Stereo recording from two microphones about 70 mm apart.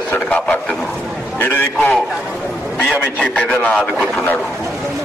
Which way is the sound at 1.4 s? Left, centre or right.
Left.